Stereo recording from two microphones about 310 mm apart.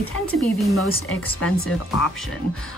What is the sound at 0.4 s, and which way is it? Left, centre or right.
Speech, centre.